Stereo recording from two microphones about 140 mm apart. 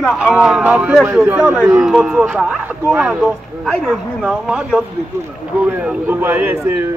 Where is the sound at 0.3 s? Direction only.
5° right (ahead or behind).